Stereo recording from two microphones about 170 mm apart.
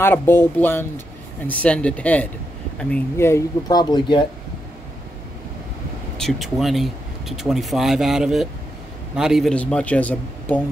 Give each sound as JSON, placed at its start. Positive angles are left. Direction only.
{"t": 0.0, "sound": "a man's voice", "side_deg": 15}
{"t": 6.1, "sound": "a man's voice", "side_deg": 0}